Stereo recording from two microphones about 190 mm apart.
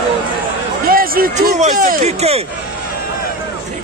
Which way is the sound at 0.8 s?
50° right (ahead or behind).